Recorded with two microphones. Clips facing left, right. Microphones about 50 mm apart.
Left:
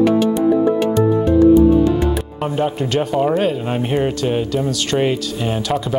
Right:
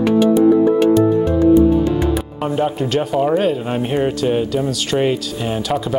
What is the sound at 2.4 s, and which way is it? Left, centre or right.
Speech, centre.